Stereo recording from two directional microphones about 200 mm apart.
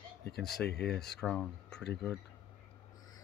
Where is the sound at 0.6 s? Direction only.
55° left (ahead or behind).